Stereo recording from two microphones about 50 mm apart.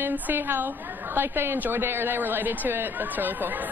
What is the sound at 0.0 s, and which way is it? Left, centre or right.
A woman's voice, right.